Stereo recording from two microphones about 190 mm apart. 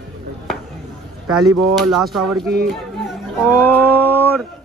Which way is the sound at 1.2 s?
Centre (ahead or behind).